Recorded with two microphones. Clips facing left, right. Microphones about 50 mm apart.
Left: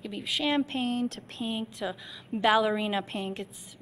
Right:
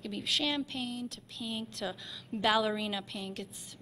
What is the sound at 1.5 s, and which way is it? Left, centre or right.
A woman's voice, left.